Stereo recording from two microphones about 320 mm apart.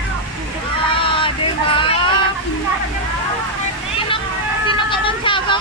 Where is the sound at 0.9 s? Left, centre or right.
Centre.